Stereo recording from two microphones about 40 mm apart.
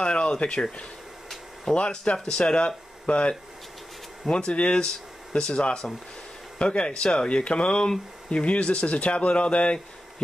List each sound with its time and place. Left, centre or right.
0.0 s speech: left